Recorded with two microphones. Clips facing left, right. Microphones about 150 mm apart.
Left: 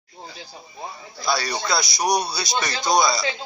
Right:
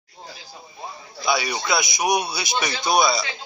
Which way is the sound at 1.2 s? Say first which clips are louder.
Right 1 dB; 5° right (ahead or behind).